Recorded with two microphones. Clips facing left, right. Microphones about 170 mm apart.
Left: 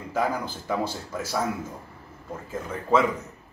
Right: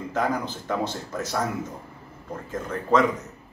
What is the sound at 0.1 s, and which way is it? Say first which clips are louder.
A man's voice: even; 5° left (ahead or behind).